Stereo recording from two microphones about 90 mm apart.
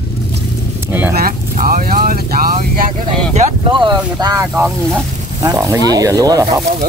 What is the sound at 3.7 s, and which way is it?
Speech, 55° right (ahead or behind).